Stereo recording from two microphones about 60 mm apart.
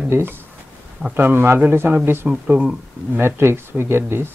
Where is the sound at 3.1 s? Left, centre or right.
Right.